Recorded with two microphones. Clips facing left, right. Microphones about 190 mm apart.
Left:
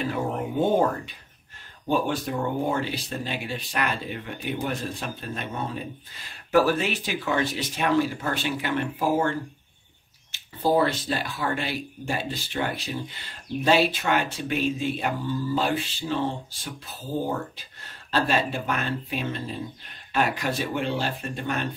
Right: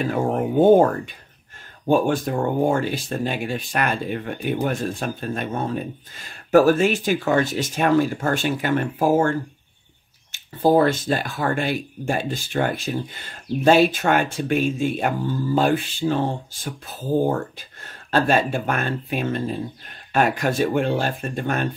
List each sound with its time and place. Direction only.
0.0 s speech: 50° right (ahead or behind)